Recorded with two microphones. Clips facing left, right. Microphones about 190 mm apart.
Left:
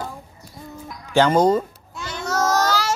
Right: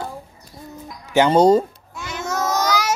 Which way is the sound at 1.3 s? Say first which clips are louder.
Right 6 dB; 35° right (ahead or behind).